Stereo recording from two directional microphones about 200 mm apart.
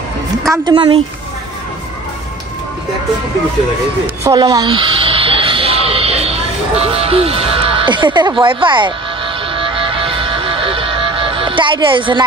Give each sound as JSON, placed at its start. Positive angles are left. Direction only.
{"t": 0.7, "sound": "speech", "side_deg": -20}
{"t": 4.2, "sound": "music", "side_deg": -15}